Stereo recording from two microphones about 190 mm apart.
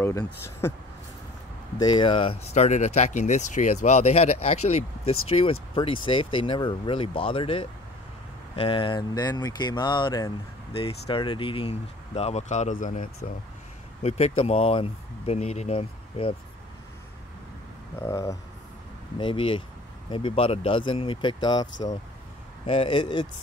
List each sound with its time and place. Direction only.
0.0 s speech: 15° left (ahead or behind)
1.8 s speech: 20° left (ahead or behind)
17.9 s speech: 15° left (ahead or behind)
22.7 s speech: 25° left (ahead or behind)